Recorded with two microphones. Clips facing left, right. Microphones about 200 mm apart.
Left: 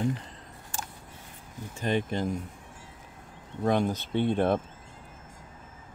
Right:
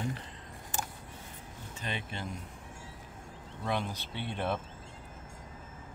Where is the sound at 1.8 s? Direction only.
45° left (ahead or behind).